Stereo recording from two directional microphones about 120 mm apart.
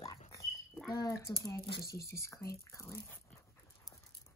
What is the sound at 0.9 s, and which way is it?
A child's voice, 30° left (ahead or behind).